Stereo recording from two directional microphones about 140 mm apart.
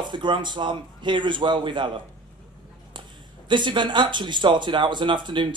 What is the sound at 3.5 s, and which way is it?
Speech, 35° right (ahead or behind).